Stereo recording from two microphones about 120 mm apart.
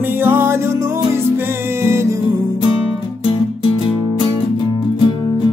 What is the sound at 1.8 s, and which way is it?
Music, 20° right (ahead or behind).